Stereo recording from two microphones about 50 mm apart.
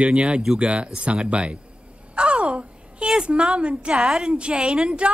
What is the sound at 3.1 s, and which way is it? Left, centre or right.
Speech, centre.